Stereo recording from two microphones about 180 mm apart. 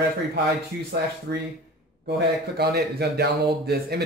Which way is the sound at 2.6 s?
60° right (ahead or behind).